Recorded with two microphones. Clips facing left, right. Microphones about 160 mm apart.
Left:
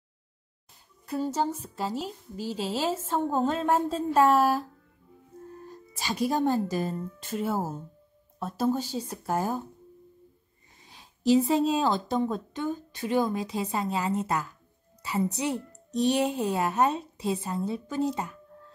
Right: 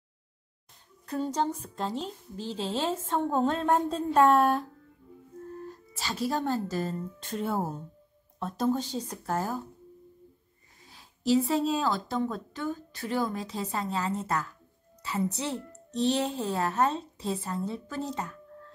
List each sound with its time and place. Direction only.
1.0 s a woman's voice: 5° left (ahead or behind)
5.9 s a woman's voice: 15° left (ahead or behind)
10.9 s a woman's voice: 20° left (ahead or behind)